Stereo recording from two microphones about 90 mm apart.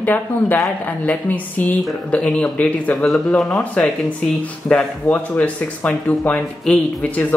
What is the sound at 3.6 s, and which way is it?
Speech, 20° left (ahead or behind).